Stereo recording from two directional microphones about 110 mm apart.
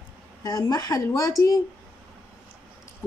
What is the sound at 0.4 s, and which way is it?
A woman's voice, 35° left (ahead or behind).